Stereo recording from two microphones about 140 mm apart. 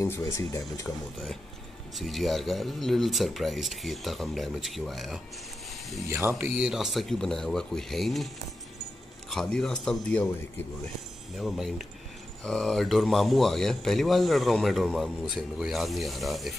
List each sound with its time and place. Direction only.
0.0 s speech: 20° left (ahead or behind)
2.0 s speech: centre (ahead or behind)
6.0 s speech: 15° right (ahead or behind); by 8.3 s centre (ahead or behind)
9.3 s speech: 5° left (ahead or behind)
11.3 s speech: centre (ahead or behind)